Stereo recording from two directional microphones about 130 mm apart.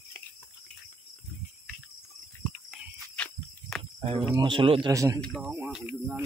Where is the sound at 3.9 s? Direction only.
40° right (ahead or behind).